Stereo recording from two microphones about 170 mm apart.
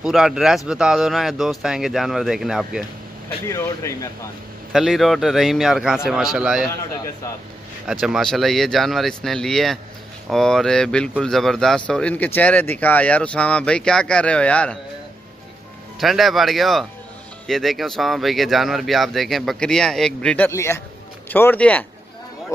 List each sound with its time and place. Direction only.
0.0 s speech: 5° right (ahead or behind)
3.4 s speech: 15° left (ahead or behind)
4.7 s speech: centre (ahead or behind)
7.8 s speech: 5° right (ahead or behind)
16.0 s speech: centre (ahead or behind)